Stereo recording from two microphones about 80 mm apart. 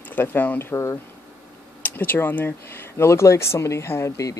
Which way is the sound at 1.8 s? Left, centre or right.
Left.